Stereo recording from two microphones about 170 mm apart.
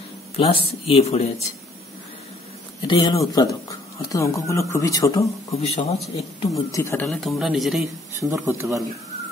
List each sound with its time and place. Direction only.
0.4 s speech: 35° left (ahead or behind)
2.8 s speech: 25° left (ahead or behind)
5.6 s speech: 40° left (ahead or behind)
6.5 s speech: 15° left (ahead or behind)
7.1 s speech: centre (ahead or behind)
8.1 s a man's voice: 15° right (ahead or behind)